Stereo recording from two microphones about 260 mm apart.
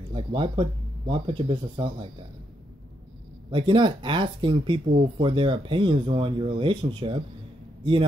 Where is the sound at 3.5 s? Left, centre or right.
Centre.